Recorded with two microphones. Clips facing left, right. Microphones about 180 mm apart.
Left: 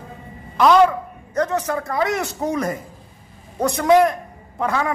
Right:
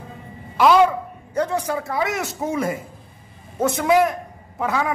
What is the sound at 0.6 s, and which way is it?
A man's voice, 10° right (ahead or behind).